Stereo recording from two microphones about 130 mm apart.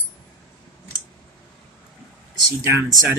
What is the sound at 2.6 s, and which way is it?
Speech, 20° right (ahead or behind).